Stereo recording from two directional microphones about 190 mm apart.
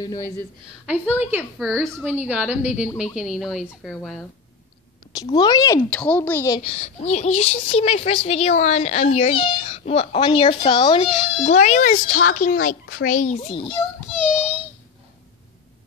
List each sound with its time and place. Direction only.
0.0 s speech: 20° left (ahead or behind)
0.8 s a woman's voice: 10° right (ahead or behind)
1.6 s speech: centre (ahead or behind)
2.0 s a woman's voice: 10° right (ahead or behind)
5.1 s speech: 20° left (ahead or behind)
5.9 s speech: 5° left (ahead or behind)
6.7 s a woman's voice: 35° left (ahead or behind)